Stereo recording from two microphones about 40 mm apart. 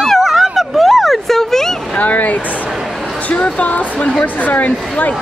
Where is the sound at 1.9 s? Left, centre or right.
Left.